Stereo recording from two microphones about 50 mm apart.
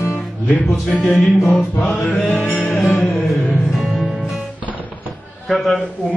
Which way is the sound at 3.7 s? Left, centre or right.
Centre.